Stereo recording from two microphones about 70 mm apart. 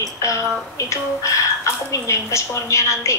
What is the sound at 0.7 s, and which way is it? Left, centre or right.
A woman's voice, left.